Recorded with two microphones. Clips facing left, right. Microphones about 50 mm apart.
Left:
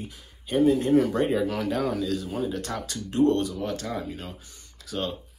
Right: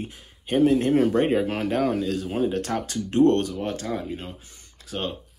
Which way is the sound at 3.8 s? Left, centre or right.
Right.